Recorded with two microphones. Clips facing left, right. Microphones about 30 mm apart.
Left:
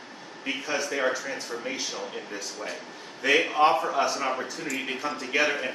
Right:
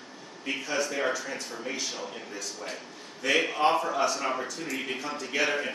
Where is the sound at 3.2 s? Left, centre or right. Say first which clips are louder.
Left 4 dB; centre.